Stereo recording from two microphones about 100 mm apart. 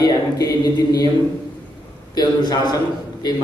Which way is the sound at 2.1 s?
40° left (ahead or behind).